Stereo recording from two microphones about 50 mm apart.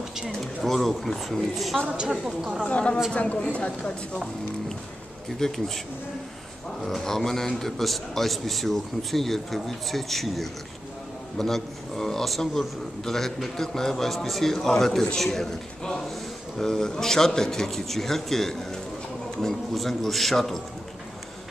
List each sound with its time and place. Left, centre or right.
0.7 s a man's voice: centre
1.9 s a woman's voice: centre
2.6 s speech: left
5.4 s a man's voice: centre
6.8 s a man's voice: centre